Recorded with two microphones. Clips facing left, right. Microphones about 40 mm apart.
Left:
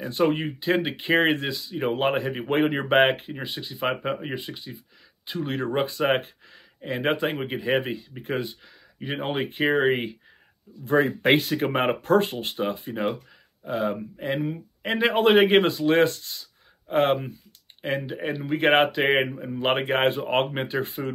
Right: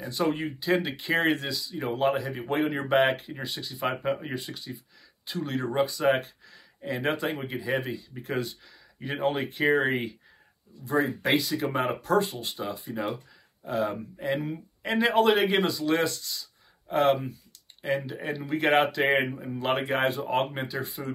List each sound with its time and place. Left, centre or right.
0.0 s speech: left
10.8 s speech: left
13.7 s speech: centre
14.2 s speech: left